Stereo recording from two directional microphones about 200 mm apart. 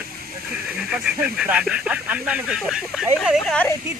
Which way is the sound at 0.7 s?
5° right (ahead or behind).